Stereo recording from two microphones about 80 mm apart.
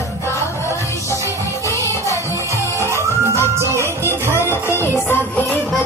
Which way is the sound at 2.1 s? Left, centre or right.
Right.